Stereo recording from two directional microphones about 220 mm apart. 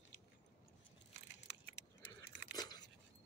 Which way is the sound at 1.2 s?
50° left (ahead or behind).